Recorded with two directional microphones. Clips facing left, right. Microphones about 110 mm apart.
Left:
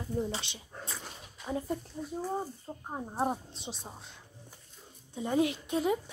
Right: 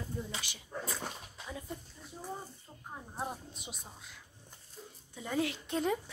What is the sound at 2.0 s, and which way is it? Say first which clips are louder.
Speech: left 13 dB; 50° left (ahead or behind).